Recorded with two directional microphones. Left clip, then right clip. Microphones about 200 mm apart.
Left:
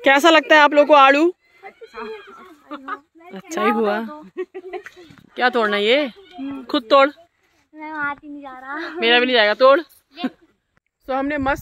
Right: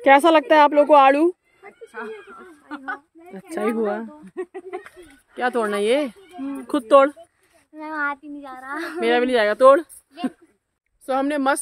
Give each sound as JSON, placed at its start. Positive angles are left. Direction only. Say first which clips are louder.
{"t": 0.0, "sound": "speech", "louder": "left 1 dB", "side_deg": 5}
{"t": 2.7, "sound": "speech", "louder": "left 1 dB", "side_deg": -40}
{"t": 3.3, "sound": "speech", "louder": "left 5 dB", "side_deg": 0}
{"t": 4.4, "sound": "laughter", "louder": "left 1 dB", "side_deg": -60}
{"t": 5.3, "sound": "speech", "louder": "left 4 dB", "side_deg": 0}
{"t": 7.7, "sound": "child singing", "louder": "even", "side_deg": -15}
{"t": 8.4, "sound": "a child's voice", "louder": "left 1 dB", "side_deg": 15}
{"t": 9.0, "sound": "speech", "louder": "left 4 dB", "side_deg": -5}
{"t": 11.1, "sound": "a woman's voice", "louder": "even", "side_deg": -10}